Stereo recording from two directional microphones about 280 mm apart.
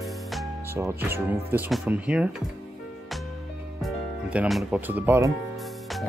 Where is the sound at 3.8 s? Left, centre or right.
Centre.